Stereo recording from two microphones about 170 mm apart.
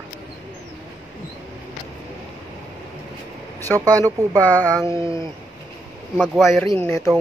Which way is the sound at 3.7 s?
20° right (ahead or behind).